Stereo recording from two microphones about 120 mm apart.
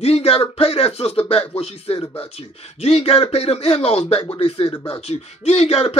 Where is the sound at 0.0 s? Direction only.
60° left (ahead or behind).